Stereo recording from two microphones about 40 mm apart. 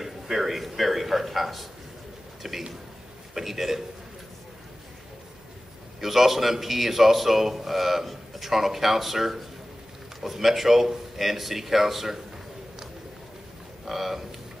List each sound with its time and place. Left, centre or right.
0.0 s a man's voice: centre
5.9 s a man's voice: centre
13.8 s a man's voice: centre